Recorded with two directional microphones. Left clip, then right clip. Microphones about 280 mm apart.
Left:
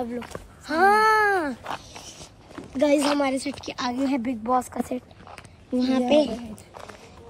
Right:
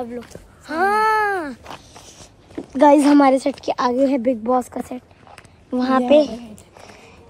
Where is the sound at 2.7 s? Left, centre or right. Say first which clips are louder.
Right 9 dB; right.